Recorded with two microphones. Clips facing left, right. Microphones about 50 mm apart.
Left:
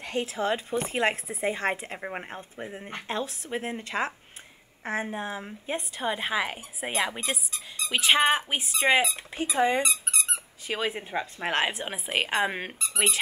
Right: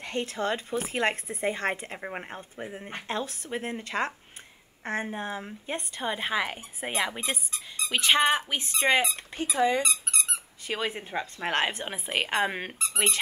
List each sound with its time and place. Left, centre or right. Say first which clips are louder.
0.0 s speech: left 1 dB; centre
9.6 s speech: left 1 dB; left
9.8 s speech: left 1 dB; centre